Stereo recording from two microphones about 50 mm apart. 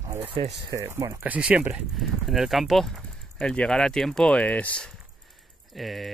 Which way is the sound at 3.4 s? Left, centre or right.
Centre.